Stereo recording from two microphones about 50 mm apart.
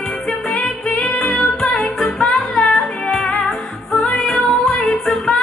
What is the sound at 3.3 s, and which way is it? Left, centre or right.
Music, centre.